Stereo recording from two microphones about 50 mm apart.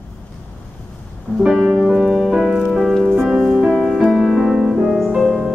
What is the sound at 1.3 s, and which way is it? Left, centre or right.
Music, left.